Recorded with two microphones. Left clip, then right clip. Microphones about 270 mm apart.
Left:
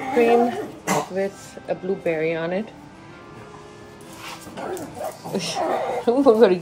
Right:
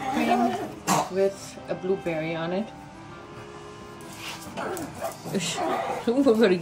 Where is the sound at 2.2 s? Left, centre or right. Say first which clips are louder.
Left 5 dB; left.